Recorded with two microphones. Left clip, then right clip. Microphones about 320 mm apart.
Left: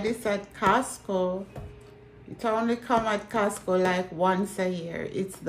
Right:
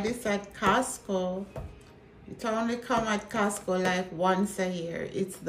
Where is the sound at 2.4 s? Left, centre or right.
Centre.